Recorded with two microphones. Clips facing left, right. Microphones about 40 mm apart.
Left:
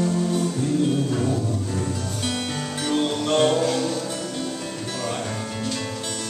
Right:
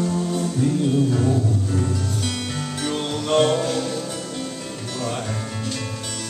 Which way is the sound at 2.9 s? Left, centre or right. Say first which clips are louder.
Left 1 dB; centre.